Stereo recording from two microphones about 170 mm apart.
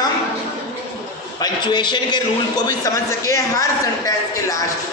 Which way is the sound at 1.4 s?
25° left (ahead or behind).